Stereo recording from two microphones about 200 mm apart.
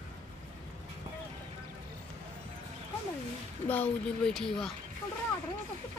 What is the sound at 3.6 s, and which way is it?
Speech, 10° left (ahead or behind).